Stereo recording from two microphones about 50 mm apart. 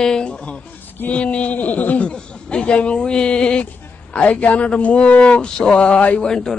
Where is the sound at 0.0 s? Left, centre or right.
Centre; by 2.0 s left.